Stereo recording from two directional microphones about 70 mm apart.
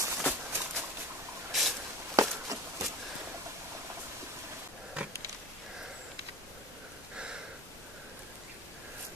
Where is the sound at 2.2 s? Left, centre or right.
Right.